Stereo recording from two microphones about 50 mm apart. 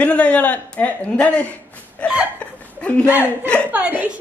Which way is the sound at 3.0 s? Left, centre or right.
Right.